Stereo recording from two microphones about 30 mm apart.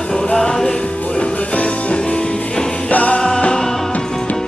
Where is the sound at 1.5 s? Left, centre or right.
Left.